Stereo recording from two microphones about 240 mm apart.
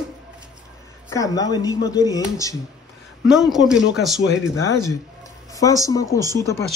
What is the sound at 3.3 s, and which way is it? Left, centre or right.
Speech, centre.